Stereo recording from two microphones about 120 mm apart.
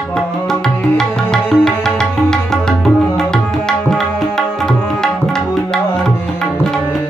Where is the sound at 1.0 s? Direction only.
5° left (ahead or behind).